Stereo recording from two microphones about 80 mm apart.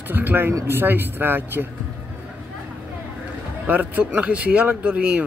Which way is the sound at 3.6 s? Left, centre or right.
Right.